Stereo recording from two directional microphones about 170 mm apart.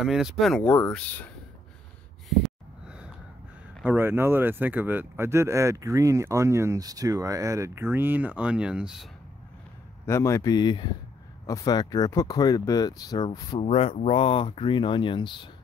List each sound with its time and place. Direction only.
0.0 s speech: centre (ahead or behind)
3.8 s speech: 10° right (ahead or behind)
10.0 s speech: 15° left (ahead or behind)
13.6 s speech: 35° left (ahead or behind)